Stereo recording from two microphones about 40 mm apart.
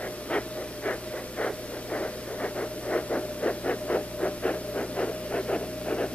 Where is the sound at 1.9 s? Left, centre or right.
Left.